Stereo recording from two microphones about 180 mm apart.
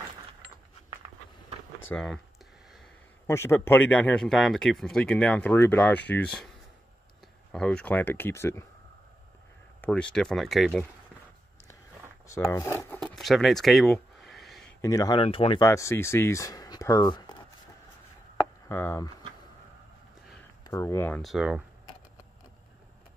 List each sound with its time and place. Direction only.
1.9 s speech: 5° left (ahead or behind)
3.3 s speech: 15° left (ahead or behind)
7.5 s speech: 5° left (ahead or behind)
9.8 s speech: 5° left (ahead or behind)
12.3 s speech: 15° left (ahead or behind)
12.9 s a sound: 5° left (ahead or behind)
14.8 s speech: 20° left (ahead or behind)
15.6 s speech: 15° left (ahead or behind)
18.7 s speech: 15° left (ahead or behind)
20.6 s speech: 15° left (ahead or behind)
21.2 s speech: centre (ahead or behind)